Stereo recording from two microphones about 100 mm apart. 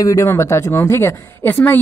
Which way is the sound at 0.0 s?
30° left (ahead or behind).